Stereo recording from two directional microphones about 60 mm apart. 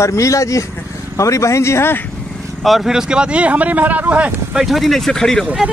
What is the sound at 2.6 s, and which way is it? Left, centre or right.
Speech, centre.